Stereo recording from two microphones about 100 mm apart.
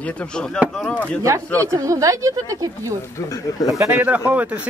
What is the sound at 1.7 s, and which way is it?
Speech, 35° right (ahead or behind).